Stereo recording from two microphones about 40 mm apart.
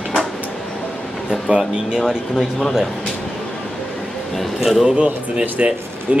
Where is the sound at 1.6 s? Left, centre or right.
Centre.